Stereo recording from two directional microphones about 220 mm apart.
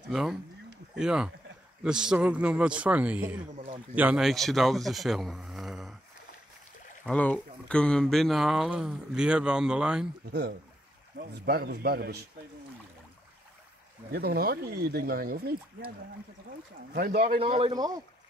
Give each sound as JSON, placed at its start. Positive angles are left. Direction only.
{"t": 0.1, "sound": "speech", "side_deg": 0}
{"t": 3.5, "sound": "a man's voice", "side_deg": -25}
{"t": 3.9, "sound": "speech", "side_deg": -5}
{"t": 7.1, "sound": "speech", "side_deg": 5}
{"t": 11.1, "sound": "speech", "side_deg": -45}
{"t": 14.1, "sound": "speech", "side_deg": -45}
{"t": 16.9, "sound": "speech", "side_deg": -40}
{"t": 17.2, "sound": "a man's voice", "side_deg": -25}